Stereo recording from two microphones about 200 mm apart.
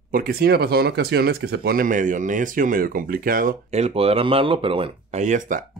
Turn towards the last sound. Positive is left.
turn(degrees=-40)  # may be behind; listen again after turning